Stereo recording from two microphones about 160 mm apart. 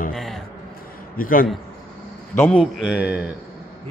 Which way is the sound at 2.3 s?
10° left (ahead or behind).